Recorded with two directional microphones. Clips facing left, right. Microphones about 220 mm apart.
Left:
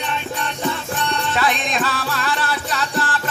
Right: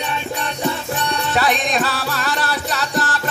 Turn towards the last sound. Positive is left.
turn(degrees=-40)  # may be behind; listen again after turning